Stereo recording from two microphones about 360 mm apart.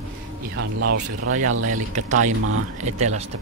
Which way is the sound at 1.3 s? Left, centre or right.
Right.